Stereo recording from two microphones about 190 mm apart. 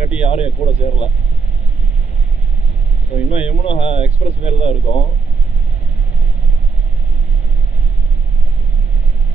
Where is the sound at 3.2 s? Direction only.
30° left (ahead or behind).